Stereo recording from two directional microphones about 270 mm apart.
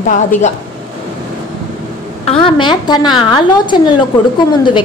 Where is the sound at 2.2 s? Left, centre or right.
Centre.